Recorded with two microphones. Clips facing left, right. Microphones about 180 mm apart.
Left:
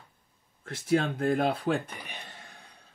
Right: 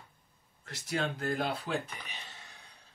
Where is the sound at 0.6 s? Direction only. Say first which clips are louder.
Left 8 dB; 55° left (ahead or behind).